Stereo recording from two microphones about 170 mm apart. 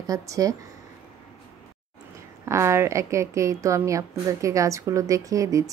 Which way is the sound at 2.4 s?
15° right (ahead or behind).